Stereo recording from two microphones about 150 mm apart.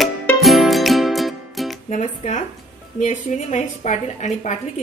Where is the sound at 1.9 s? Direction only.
55° left (ahead or behind).